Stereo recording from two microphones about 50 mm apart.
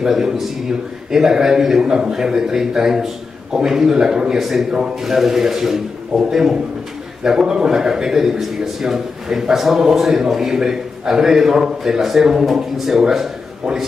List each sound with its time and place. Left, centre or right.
0.0 s a man's voice: centre